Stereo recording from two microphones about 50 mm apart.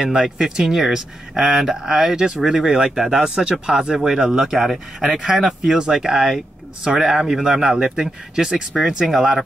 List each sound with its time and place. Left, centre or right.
0.0 s speech: centre